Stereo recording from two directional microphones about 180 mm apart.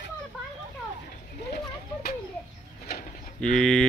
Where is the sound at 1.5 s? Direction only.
60° left (ahead or behind).